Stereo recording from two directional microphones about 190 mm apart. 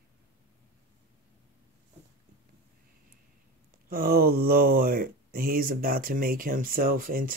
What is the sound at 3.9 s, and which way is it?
Speech, 50° right (ahead or behind).